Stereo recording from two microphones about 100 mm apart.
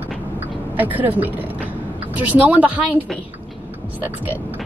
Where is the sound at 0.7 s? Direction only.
20° right (ahead or behind).